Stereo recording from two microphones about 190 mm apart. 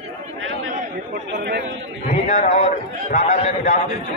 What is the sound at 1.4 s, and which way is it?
Speech, 55° right (ahead or behind).